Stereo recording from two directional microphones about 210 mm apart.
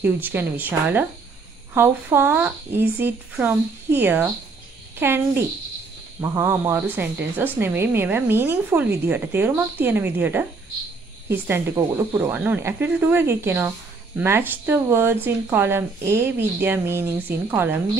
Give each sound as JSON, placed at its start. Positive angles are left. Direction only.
{"t": 0.0, "sound": "a woman's voice", "side_deg": -10}
{"t": 6.2, "sound": "a woman's voice", "side_deg": -15}